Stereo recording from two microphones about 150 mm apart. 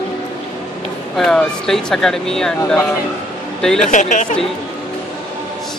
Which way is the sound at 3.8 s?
55° left (ahead or behind).